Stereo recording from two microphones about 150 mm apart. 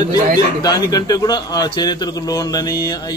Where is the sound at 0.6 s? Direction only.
25° left (ahead or behind).